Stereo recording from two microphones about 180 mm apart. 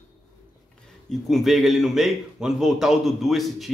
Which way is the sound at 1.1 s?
Centre (ahead or behind).